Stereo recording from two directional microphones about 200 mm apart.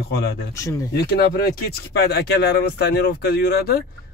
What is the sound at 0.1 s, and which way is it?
Speech, 55° left (ahead or behind).